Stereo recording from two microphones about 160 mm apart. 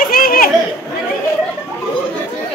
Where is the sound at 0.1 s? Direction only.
65° left (ahead or behind).